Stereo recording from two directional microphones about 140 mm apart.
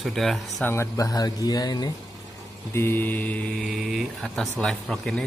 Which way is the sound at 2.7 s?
15° left (ahead or behind).